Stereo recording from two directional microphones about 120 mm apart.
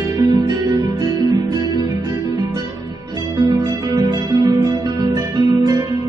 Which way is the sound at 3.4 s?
30° right (ahead or behind).